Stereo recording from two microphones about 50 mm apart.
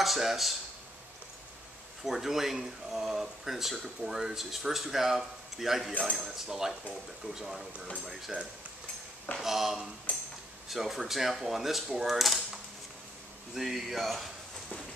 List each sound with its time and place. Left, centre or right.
0.0 s speech: centre
2.0 s speech: centre
6.1 s cutlery: centre
10.1 s a sound: left
10.7 s speech: centre
13.6 s speech: centre